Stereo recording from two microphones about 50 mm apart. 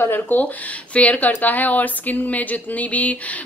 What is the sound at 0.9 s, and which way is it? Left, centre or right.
A woman's voice, left.